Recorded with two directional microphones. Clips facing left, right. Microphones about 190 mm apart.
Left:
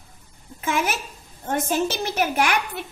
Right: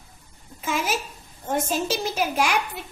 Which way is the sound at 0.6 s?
60° left (ahead or behind).